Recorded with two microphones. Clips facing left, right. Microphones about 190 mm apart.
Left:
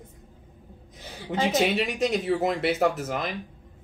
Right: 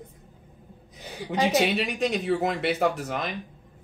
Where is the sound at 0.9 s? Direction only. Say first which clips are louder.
Right 1 dB; 15° right (ahead or behind).